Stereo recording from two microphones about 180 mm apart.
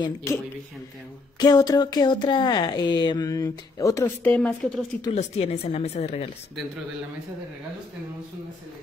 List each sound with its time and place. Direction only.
0.0 s a man's voice: 15° left (ahead or behind)
1.4 s speech: 20° left (ahead or behind)
5.1 s speech: 35° left (ahead or behind)